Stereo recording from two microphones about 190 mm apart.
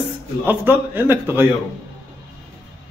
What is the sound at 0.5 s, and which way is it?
A man's voice, 10° right (ahead or behind).